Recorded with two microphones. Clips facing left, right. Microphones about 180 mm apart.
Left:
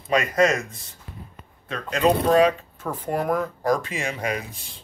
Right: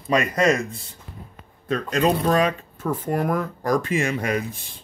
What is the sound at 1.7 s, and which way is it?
Speech, 40° right (ahead or behind).